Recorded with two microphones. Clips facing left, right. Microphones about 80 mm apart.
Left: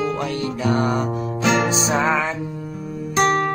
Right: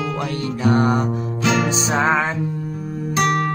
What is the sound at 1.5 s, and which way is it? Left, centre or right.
Music, left.